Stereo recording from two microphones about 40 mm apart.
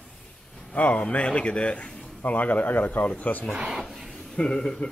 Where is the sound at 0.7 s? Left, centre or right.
Left.